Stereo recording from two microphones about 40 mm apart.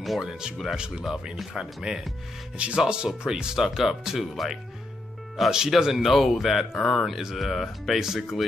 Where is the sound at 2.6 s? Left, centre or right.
Right.